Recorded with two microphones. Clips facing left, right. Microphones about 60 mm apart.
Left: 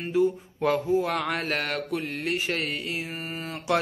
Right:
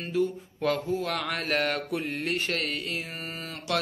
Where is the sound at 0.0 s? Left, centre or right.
Centre.